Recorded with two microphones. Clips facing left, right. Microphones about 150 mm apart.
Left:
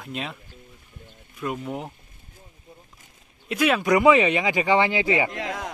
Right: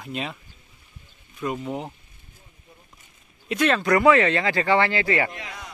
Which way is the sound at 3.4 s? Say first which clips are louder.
Even; 5° left (ahead or behind).